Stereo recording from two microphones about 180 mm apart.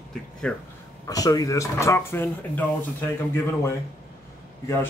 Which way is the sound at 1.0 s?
20° left (ahead or behind).